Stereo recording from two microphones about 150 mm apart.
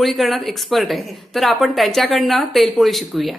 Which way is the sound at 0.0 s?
Centre (ahead or behind).